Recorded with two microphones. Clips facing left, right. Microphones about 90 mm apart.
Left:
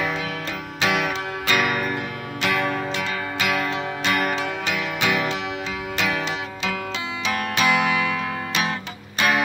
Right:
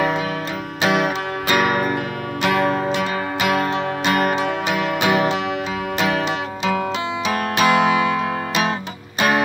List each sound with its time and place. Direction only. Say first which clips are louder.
0.8 s music: right 4 dB; 35° right (ahead or behind)
2.9 s music: right 5 dB; 20° right (ahead or behind)
3.4 s music: right 5 dB; 35° right (ahead or behind)
7.6 s music: right 5 dB; 30° right (ahead or behind)